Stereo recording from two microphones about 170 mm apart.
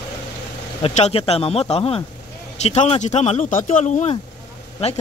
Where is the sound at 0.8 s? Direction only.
40° left (ahead or behind).